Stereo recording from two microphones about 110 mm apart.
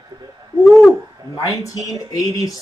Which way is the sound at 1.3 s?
30° left (ahead or behind).